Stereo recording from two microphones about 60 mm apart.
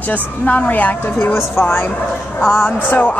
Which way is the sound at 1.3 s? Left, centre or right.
Left.